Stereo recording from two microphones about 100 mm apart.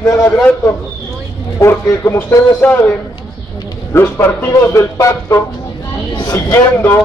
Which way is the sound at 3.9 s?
25° left (ahead or behind).